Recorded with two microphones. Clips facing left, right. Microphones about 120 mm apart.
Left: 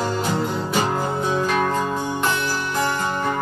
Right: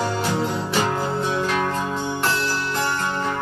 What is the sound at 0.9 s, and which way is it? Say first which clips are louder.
Music: left 1 dB; 20° left (ahead or behind).